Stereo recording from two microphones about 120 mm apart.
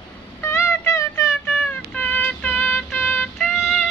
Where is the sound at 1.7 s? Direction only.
10° left (ahead or behind).